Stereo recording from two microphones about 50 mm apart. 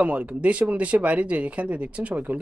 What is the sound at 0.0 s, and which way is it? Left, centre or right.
Speech, right.